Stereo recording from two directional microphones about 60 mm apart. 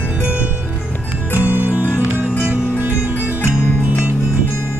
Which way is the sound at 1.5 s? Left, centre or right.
Right.